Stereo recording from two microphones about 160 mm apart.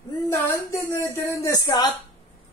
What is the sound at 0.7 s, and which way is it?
Speech, 15° left (ahead or behind).